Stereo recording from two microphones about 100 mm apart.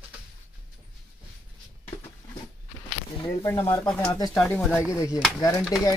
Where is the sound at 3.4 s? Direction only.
25° left (ahead or behind).